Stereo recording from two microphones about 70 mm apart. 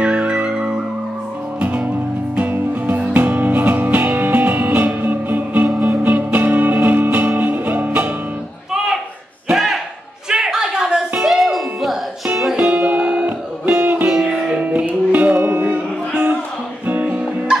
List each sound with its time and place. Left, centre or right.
0.0 s music: centre
9.5 s a sound: centre
10.3 s music: centre
12.5 s music: right
16.8 s music: right